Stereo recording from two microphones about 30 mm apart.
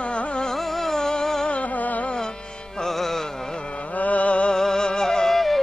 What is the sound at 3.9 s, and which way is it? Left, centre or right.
Music, left.